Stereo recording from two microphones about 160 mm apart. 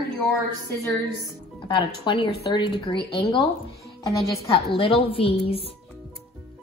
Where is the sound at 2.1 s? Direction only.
30° left (ahead or behind).